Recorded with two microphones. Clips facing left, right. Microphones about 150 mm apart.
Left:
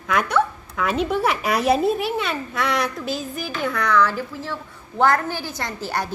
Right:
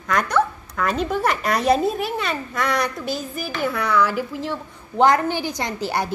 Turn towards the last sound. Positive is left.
turn(degrees=-15)  # may be behind; listen again after turning